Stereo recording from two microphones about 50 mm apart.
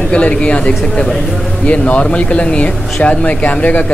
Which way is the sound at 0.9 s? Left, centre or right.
Centre.